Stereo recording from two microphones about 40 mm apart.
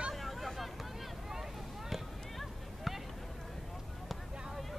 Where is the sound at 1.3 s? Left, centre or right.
Centre.